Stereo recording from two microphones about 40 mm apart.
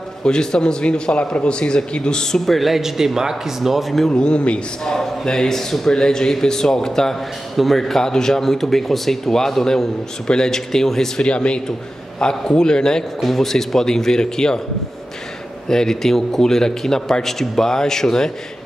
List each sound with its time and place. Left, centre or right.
0.2 s speech: centre
2.4 s speech: centre
4.1 s a man's voice: left
7.5 s speech: centre
8.0 s a man's voice: centre
11.2 s speech: left
13.2 s a man's voice: centre
15.7 s a man's voice: centre